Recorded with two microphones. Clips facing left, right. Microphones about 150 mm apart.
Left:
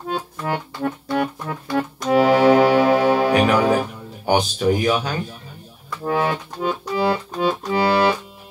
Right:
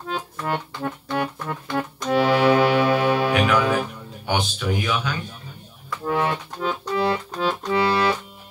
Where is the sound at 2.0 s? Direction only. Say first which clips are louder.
Left 4 dB; 40° left (ahead or behind).